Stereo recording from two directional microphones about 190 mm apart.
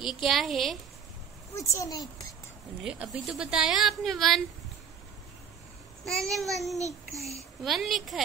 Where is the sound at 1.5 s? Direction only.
15° left (ahead or behind).